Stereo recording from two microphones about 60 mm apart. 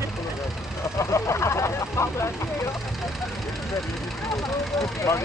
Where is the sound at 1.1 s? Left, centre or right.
Left.